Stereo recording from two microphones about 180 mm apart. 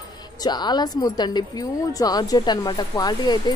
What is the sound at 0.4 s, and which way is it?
A woman's voice, 25° left (ahead or behind).